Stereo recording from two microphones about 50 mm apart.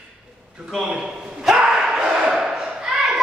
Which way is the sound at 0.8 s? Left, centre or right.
Centre.